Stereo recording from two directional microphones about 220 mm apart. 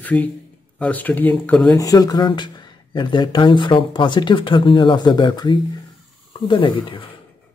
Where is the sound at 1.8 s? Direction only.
15° left (ahead or behind).